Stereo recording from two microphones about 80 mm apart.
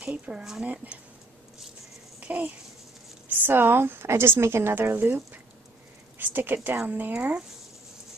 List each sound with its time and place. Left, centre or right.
0.0 s speech: centre
2.1 s a sound: centre
3.3 s a woman's voice: right